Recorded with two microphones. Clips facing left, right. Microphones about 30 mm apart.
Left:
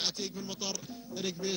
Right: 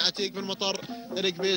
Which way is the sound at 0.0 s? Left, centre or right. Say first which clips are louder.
Right 7 dB; right.